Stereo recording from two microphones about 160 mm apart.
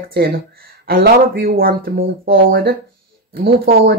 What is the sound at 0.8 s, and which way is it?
Speech, 70° right (ahead or behind).